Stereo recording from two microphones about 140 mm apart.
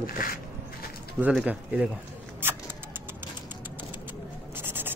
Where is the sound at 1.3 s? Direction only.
10° right (ahead or behind).